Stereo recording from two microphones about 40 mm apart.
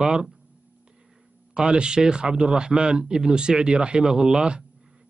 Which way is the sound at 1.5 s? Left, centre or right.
Right.